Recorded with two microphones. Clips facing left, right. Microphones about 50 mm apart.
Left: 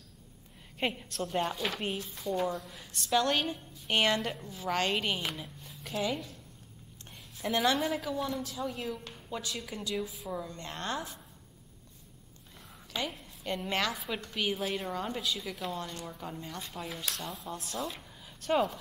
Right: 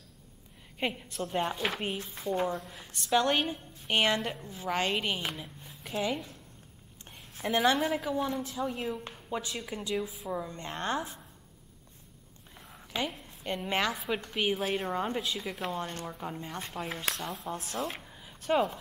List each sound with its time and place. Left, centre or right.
0.7 s a woman's voice: centre
2.3 s speech: right
2.9 s a woman's voice: centre
3.2 s a woman's voice: centre
5.6 s a sound: centre
7.5 s a woman's voice: centre; by 11.1 s right
12.7 s a woman's voice: centre
13.9 s a woman's voice: centre
14.2 s speech: centre
14.9 s a woman's voice: right
15.7 s speech: right
16.1 s a woman's voice: right
16.5 s speech: right
18.0 s a sound: centre